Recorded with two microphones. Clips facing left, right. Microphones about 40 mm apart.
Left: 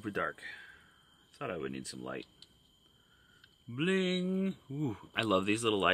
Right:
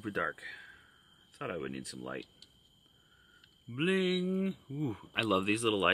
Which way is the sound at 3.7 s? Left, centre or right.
Centre.